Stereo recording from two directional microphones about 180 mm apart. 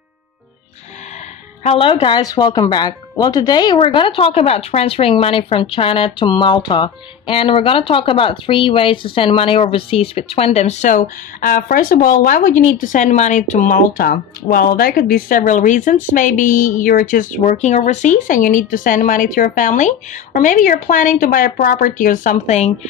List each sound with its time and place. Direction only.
1.6 s speech: 35° left (ahead or behind)